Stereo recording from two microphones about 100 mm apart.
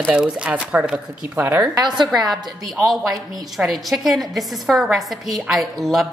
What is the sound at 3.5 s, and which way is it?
A woman's voice, centre (ahead or behind).